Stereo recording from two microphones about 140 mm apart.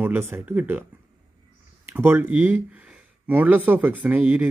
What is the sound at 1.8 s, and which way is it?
Speech, 15° right (ahead or behind).